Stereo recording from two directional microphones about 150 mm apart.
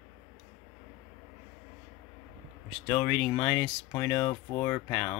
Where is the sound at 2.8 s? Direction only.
10° left (ahead or behind).